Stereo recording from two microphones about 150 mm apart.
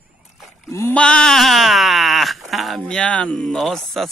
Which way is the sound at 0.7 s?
15° left (ahead or behind).